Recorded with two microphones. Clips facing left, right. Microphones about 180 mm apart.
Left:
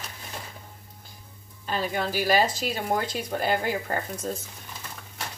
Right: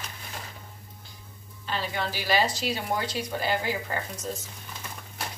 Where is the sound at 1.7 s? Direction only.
45° left (ahead or behind).